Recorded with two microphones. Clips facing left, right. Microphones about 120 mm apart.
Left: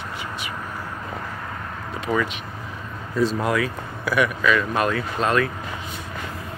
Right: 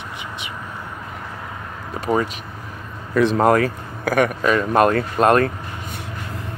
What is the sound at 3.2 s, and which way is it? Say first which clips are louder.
Speech: right 6 dB; 60° right (ahead or behind).